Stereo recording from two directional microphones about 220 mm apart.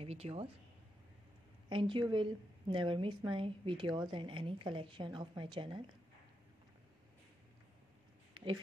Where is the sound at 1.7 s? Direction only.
20° right (ahead or behind).